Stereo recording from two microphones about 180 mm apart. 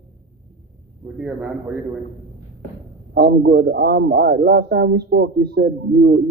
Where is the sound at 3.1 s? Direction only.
65° right (ahead or behind).